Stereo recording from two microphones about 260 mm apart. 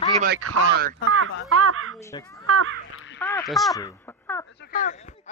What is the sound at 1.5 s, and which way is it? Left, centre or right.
Speech, right.